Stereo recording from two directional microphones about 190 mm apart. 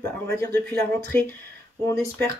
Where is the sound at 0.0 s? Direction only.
10° left (ahead or behind).